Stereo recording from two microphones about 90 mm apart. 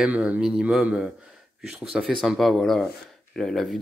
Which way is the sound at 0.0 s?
15° right (ahead or behind).